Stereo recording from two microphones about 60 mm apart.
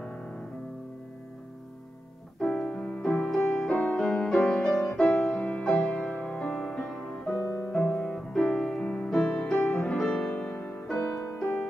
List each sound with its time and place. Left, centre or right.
2.5 s keyboard: centre
2.8 s music: centre
3.3 s music: centre
7.3 s music: left
7.7 s music: centre
11.0 s music: left